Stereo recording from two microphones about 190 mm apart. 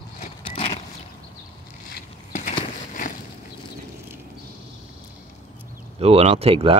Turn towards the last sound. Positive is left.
turn(degrees=-30)  # may be behind; listen again after turning